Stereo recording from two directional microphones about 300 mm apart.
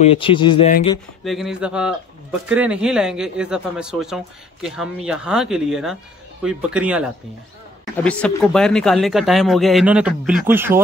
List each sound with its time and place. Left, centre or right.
0.0 s speech: centre
1.2 s speech: centre